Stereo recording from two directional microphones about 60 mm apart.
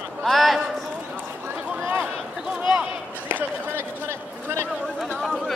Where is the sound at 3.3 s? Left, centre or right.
Right.